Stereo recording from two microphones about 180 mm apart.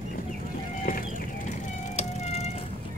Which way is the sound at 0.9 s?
50° left (ahead or behind).